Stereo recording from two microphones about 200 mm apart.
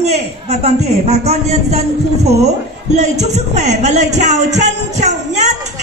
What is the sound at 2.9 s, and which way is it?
A man's voice, 35° right (ahead or behind).